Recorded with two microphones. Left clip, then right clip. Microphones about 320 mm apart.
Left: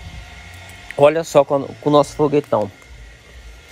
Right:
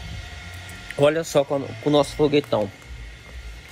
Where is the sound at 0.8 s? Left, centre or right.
Centre.